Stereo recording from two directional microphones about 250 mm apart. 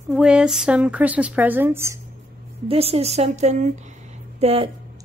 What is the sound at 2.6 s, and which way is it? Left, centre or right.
A woman's voice, right.